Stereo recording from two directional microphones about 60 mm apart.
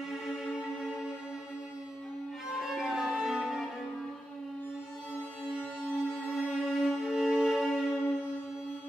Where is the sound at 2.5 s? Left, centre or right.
Centre.